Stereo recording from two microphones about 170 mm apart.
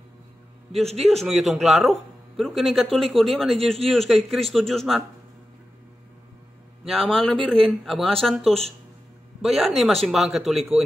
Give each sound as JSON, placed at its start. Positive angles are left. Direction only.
{"t": 0.8, "sound": "a man's voice", "side_deg": -40}
{"t": 1.1, "sound": "speech", "side_deg": 0}
{"t": 6.8, "sound": "speech", "side_deg": 0}
{"t": 8.5, "sound": "a man's voice", "side_deg": -35}
{"t": 9.4, "sound": "speech", "side_deg": 0}